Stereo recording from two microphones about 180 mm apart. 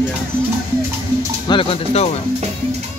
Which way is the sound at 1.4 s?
30° left (ahead or behind).